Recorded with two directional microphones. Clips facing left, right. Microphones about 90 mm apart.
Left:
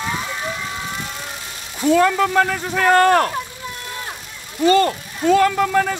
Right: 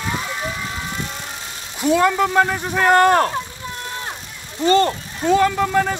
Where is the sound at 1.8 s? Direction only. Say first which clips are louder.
Left 1 dB; 15° right (ahead or behind).